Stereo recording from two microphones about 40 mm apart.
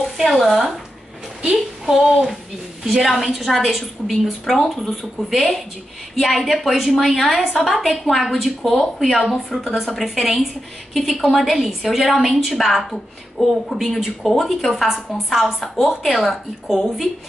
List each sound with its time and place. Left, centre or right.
0.0 s speech: centre
1.9 s a woman's voice: centre
7.3 s speech: centre
7.6 s a woman's voice: centre
13.4 s speech: centre
13.7 s speech: centre
14.3 s a woman's voice: centre
14.7 s a woman's voice: centre